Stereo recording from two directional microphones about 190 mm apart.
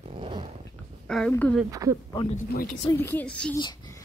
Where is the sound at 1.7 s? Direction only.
15° right (ahead or behind).